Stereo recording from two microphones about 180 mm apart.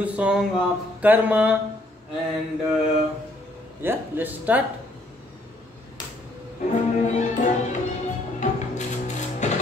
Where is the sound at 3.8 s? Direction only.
10° right (ahead or behind).